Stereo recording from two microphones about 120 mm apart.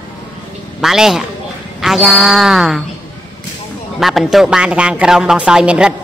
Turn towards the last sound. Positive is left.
turn(degrees=-5)  # may be behind; listen again after turning